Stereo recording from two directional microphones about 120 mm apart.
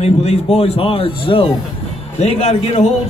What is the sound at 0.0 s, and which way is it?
Speech, 65° left (ahead or behind).